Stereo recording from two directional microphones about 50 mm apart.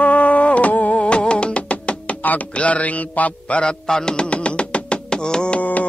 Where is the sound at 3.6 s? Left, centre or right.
Centre.